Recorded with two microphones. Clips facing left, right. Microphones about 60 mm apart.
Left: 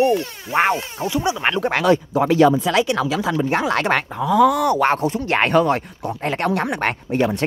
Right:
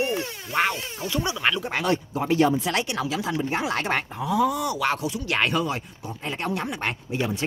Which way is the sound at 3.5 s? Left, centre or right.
Left.